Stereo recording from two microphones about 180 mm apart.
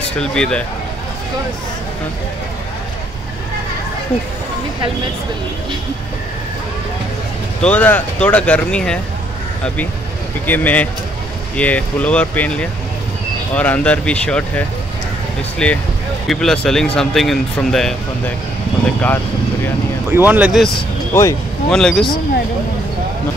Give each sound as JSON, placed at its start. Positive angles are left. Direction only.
{"t": 0.2, "sound": "speech", "side_deg": 5}
{"t": 7.6, "sound": "speech", "side_deg": 10}
{"t": 10.4, "sound": "speech", "side_deg": 10}
{"t": 15.6, "sound": "speech", "side_deg": 5}
{"t": 20.1, "sound": "speech", "side_deg": -10}
{"t": 21.1, "sound": "speech", "side_deg": 15}
{"t": 21.6, "sound": "speech", "side_deg": 5}